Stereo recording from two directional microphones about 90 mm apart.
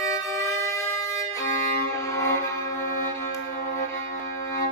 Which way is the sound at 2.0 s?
35° left (ahead or behind).